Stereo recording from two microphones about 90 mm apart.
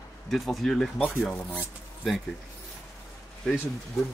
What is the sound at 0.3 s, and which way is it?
Speech, centre (ahead or behind).